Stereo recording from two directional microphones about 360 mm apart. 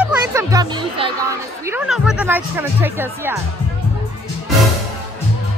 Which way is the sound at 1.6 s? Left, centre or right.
Centre.